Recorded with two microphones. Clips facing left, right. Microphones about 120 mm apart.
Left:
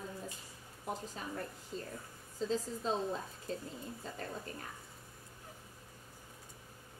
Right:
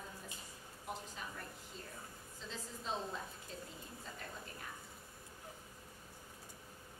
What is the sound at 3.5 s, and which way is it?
Speech, 40° left (ahead or behind).